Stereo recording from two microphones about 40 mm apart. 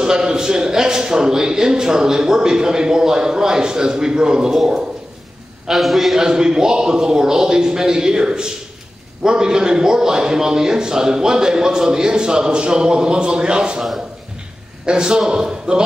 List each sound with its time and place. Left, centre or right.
0.0 s a man's voice: centre
5.7 s a man's voice: centre
6.1 s a man's voice: centre
14.9 s a man's voice: right